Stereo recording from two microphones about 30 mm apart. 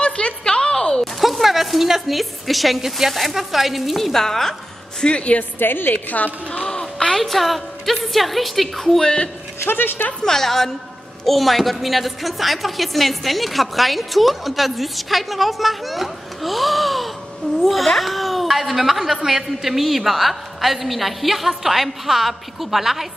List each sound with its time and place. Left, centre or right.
0.0 s a sound: left
0.6 s a sound: left
1.2 s a woman's voice: centre
4.1 s a woman's voice: centre
5.0 s speech: left
6.0 s a woman's voice: left
6.6 s a sound: centre
7.2 s a woman's voice: centre
10.2 s a woman's voice: centre